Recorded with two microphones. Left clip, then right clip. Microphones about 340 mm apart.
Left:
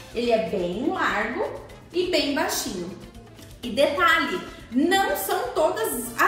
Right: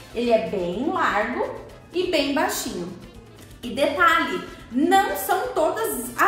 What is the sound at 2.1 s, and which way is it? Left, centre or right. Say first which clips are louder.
Speech: right 2 dB; centre.